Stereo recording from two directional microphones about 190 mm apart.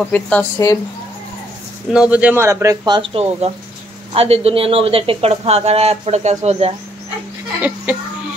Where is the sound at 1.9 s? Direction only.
5° right (ahead or behind); by 6.7 s 35° right (ahead or behind).